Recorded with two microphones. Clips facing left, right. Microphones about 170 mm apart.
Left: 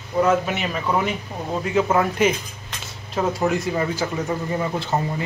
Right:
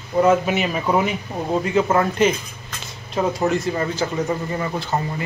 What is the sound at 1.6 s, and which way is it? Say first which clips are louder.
Speech: left 1 dB; centre (ahead or behind).